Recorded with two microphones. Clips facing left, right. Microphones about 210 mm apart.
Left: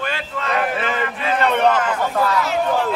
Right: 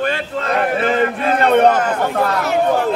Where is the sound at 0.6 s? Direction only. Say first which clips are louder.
Right 7 dB; 45° right (ahead or behind).